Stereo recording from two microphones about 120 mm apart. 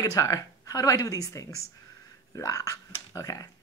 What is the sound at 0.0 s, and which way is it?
Speech, 30° left (ahead or behind).